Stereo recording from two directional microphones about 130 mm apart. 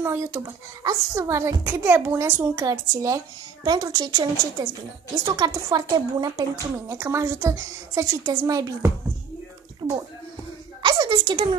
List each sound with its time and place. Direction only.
0.0 s a woman's voice: 20° right (ahead or behind); by 11.5 s 40° right (ahead or behind)